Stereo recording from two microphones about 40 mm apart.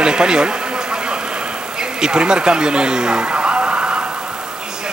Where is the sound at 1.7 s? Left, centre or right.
Centre.